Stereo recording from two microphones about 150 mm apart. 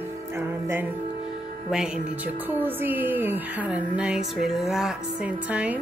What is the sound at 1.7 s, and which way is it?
A woman's voice, 5° right (ahead or behind).